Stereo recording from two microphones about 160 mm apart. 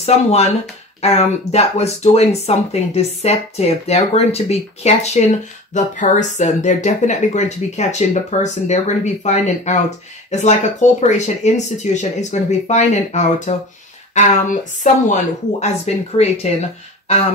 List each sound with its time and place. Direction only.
0.0 s speech: 40° left (ahead or behind)